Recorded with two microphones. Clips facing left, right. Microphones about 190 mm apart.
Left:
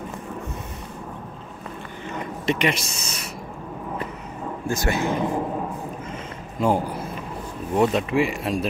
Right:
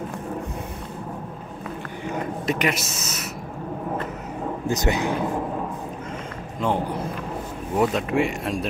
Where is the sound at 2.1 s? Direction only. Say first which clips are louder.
Even; centre (ahead or behind).